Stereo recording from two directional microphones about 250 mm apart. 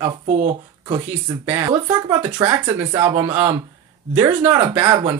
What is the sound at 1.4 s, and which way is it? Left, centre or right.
Speech, centre.